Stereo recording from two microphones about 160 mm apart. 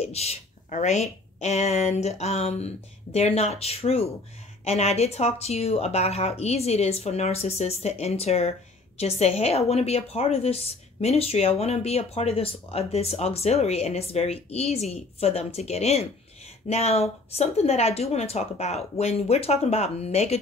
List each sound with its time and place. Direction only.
0.0 s speech: 40° left (ahead or behind)